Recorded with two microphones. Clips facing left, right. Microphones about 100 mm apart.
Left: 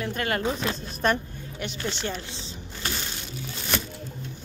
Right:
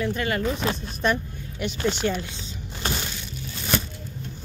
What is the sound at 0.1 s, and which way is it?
A woman's voice, 45° left (ahead or behind).